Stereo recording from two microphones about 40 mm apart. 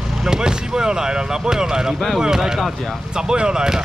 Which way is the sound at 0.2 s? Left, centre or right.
Centre.